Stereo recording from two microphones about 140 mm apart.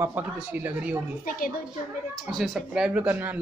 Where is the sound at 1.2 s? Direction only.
90° left.